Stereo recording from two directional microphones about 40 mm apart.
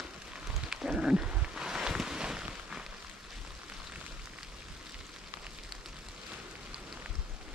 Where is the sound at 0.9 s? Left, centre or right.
Right.